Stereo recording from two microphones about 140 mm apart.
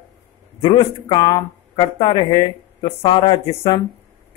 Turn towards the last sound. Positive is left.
turn(degrees=40)  # may be behind; listen again after turning